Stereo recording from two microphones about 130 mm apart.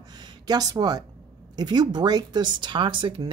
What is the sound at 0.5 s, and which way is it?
Speech, 30° right (ahead or behind).